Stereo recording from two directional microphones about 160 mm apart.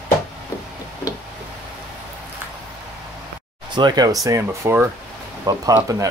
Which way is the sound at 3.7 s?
25° right (ahead or behind).